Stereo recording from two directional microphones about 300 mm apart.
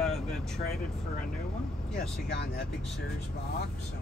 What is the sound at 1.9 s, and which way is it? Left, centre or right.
Speech, left.